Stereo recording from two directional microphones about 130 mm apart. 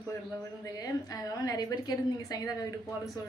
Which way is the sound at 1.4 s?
30° left (ahead or behind).